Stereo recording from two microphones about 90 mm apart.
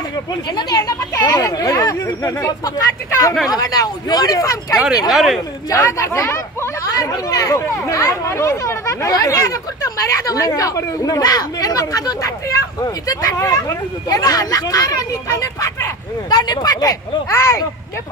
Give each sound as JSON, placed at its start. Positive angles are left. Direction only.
{"t": 0.6, "sound": "speech", "side_deg": 50}
{"t": 5.1, "sound": "speech", "side_deg": 0}
{"t": 5.7, "sound": "speech", "side_deg": 35}